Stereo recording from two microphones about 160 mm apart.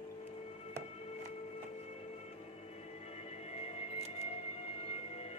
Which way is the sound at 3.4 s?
40° left (ahead or behind).